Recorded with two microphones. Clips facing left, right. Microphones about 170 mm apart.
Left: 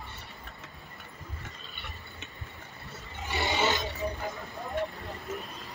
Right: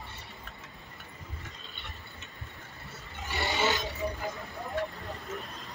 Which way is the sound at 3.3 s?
20° left (ahead or behind).